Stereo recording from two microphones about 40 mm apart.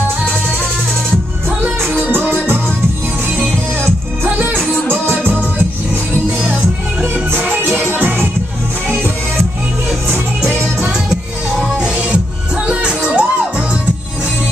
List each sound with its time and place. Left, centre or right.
3.8 s music: right
5.1 s music: right
6.5 s music: right
12.6 s music: right